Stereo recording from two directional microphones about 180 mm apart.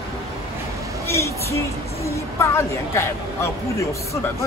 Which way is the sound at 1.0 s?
15° left (ahead or behind).